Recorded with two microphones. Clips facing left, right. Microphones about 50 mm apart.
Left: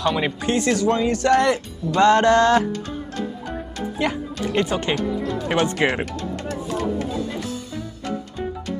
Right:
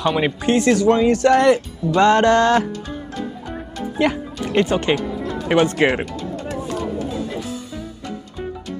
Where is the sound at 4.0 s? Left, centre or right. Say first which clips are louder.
Right 4 dB; centre.